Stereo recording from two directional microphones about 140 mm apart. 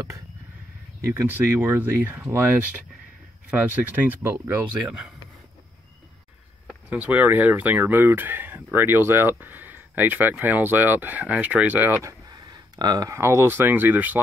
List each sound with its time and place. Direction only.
1.0 s speech: 15° right (ahead or behind)
6.9 s speech: 10° right (ahead or behind)